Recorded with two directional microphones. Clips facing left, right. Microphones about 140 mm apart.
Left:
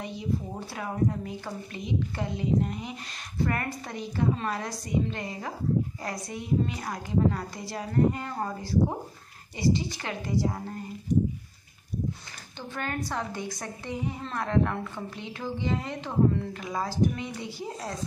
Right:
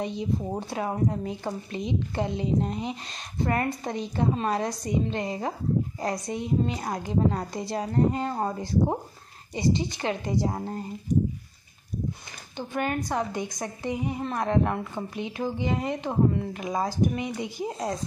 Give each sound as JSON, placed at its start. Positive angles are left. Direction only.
{"t": 0.0, "sound": "a woman's voice", "side_deg": -20}
{"t": 9.6, "sound": "a woman's voice", "side_deg": -20}
{"t": 12.5, "sound": "a woman's voice", "side_deg": -15}